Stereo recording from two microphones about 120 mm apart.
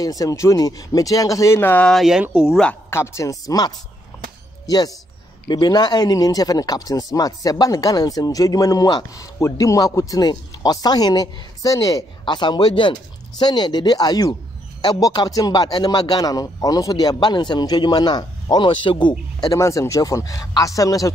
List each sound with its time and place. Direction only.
0.0 s speech: 30° left (ahead or behind)
1.9 s speech: centre (ahead or behind)
2.5 s speech: 10° left (ahead or behind)
2.9 s speech: 25° left (ahead or behind); by 19.5 s 40° left (ahead or behind)
19.5 s speech: 25° left (ahead or behind)